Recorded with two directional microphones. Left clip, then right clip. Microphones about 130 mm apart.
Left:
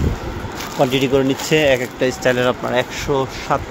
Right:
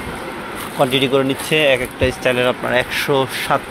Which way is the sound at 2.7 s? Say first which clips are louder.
Right 2 dB; 15° left (ahead or behind).